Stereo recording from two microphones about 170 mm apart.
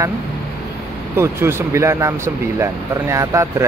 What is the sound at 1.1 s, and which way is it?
Speech, 15° right (ahead or behind).